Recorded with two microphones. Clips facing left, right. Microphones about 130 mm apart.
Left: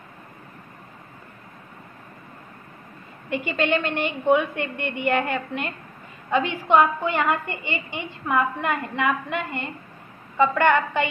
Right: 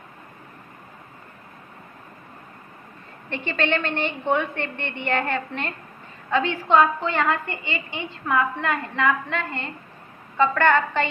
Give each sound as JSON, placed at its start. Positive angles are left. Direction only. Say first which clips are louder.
{"t": 3.3, "sound": "a woman's voice", "louder": "left 2 dB", "side_deg": 10}